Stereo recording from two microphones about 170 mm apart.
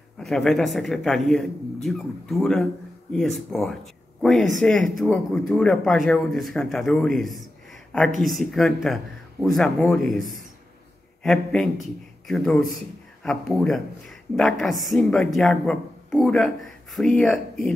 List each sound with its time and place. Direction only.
0.2 s speech: centre (ahead or behind)
10.1 s a man's voice: 55° right (ahead or behind)
11.2 s speech: centre (ahead or behind)